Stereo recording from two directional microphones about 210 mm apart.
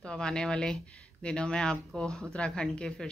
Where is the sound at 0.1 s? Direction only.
5° left (ahead or behind).